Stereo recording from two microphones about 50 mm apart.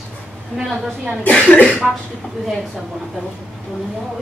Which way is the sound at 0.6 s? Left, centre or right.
Centre.